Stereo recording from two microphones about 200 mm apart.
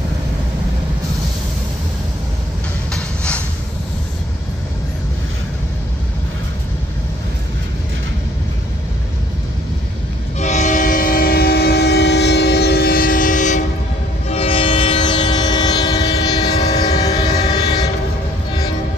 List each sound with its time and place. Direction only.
2.9 s train: 5° left (ahead or behind)
10.4 s train: 35° left (ahead or behind)
14.3 s train: 30° left (ahead or behind)